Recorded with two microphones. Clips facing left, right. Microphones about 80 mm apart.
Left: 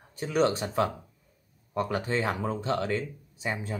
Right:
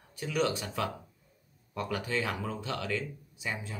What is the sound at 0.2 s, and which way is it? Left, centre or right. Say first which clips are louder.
Speech: left 5 dB; left.